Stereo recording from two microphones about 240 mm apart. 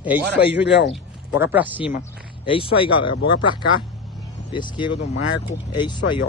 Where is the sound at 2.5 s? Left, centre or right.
Left.